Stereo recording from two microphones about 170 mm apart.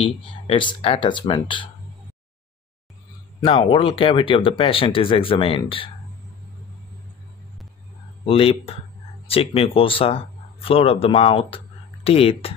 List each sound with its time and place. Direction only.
0.0 s speech: 30° left (ahead or behind)
3.4 s speech: 35° left (ahead or behind)
8.3 s speech: 35° left (ahead or behind)